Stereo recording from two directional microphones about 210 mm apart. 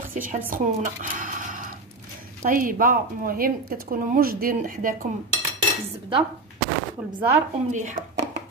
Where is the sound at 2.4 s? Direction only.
40° right (ahead or behind).